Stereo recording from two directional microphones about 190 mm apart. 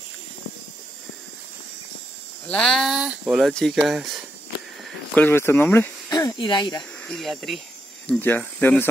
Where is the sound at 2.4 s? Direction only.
5° left (ahead or behind).